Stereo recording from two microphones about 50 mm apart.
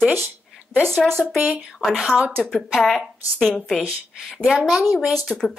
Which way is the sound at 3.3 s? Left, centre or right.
Centre.